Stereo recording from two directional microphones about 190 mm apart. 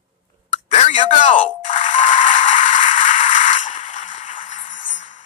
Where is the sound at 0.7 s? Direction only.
40° left (ahead or behind).